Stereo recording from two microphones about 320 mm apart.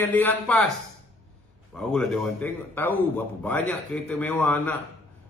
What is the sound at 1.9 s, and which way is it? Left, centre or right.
A man's voice, centre.